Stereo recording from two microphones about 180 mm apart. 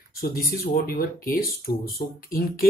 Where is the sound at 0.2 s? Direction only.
55° left (ahead or behind).